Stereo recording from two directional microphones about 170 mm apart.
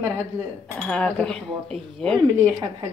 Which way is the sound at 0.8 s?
10° left (ahead or behind).